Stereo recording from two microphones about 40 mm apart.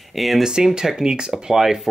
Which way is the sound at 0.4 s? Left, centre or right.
Centre.